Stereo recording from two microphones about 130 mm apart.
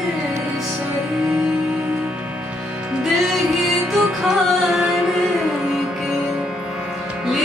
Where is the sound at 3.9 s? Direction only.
5° right (ahead or behind).